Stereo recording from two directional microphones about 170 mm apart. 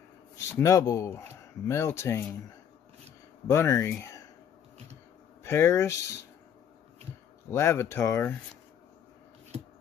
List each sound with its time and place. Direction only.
0.4 s speech: 20° left (ahead or behind)
3.4 s speech: 15° left (ahead or behind)
5.4 s speech: 15° left (ahead or behind)
7.5 s speech: 15° left (ahead or behind)